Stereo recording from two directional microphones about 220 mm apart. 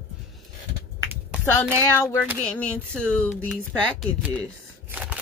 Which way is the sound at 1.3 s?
5° right (ahead or behind).